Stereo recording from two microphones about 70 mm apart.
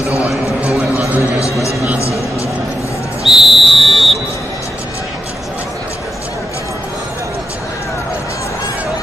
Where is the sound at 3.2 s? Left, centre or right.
Centre.